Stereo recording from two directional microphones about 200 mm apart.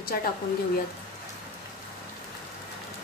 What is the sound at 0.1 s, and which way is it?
Speech, 50° left (ahead or behind).